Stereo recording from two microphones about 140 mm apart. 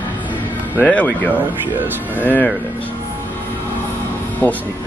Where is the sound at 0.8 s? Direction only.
10° left (ahead or behind).